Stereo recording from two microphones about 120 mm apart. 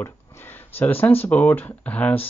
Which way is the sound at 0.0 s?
15° left (ahead or behind).